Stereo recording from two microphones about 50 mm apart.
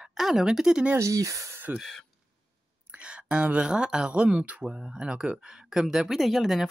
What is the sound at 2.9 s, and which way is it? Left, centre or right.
Speech, right.